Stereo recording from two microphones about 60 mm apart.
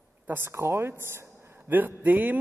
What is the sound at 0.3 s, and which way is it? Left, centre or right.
A man's voice, right.